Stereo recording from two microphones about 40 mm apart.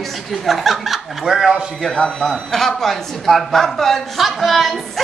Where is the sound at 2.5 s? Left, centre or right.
Centre.